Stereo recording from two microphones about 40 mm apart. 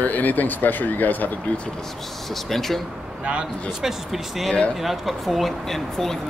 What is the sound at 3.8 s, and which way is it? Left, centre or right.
Speech, centre.